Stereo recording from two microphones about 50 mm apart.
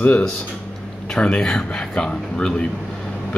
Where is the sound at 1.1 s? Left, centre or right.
Centre.